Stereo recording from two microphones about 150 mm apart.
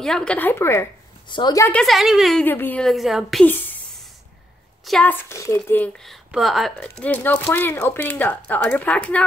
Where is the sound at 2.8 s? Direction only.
Centre (ahead or behind).